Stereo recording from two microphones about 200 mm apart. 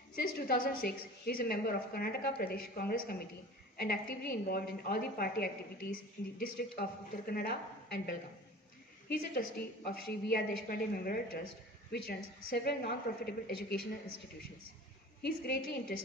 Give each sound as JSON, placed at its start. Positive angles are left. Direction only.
{"t": 0.1, "sound": "a woman's voice", "side_deg": 50}
{"t": 15.9, "sound": "a woman's voice", "side_deg": 45}